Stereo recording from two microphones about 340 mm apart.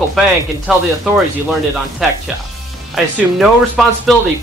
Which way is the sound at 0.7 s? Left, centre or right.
Centre.